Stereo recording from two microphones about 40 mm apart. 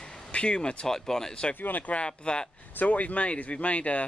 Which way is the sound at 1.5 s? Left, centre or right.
Left.